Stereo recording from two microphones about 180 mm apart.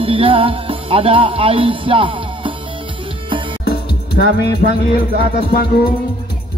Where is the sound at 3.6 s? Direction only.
65° left (ahead or behind).